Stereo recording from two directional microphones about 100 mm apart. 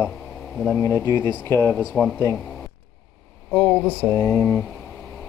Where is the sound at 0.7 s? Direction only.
30° left (ahead or behind).